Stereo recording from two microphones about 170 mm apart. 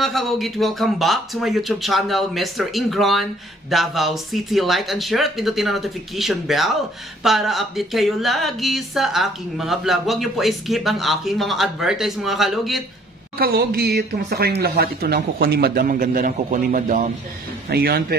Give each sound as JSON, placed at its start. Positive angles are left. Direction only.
{"t": 0.0, "sound": "speech", "side_deg": 0}
{"t": 13.4, "sound": "speech", "side_deg": -65}
{"t": 17.6, "sound": "speech", "side_deg": -65}